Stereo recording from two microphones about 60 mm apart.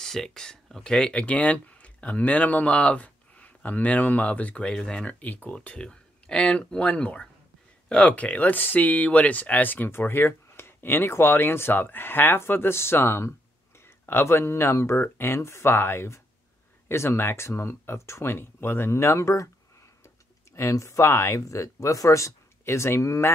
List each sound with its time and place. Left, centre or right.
0.0 s speech: centre; by 19.5 s left
20.5 s speech: left